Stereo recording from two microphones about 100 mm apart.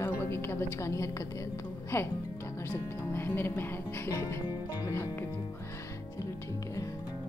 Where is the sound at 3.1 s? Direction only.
20° left (ahead or behind).